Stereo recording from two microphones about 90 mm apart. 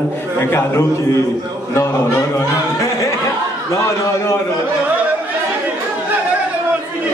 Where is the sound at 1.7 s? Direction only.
30° left (ahead or behind).